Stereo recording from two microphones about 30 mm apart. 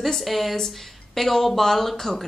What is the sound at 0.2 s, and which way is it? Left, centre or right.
A woman's voice, centre.